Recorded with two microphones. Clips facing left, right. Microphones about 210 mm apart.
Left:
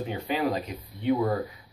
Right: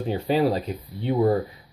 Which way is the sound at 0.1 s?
35° right (ahead or behind).